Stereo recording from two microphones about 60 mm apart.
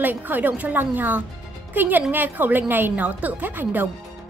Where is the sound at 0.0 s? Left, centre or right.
Right.